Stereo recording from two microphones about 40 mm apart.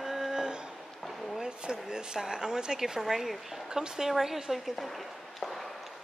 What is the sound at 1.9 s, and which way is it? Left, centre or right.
Speech, centre.